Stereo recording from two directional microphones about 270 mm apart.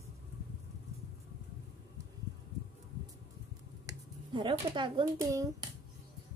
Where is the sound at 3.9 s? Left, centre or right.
Centre.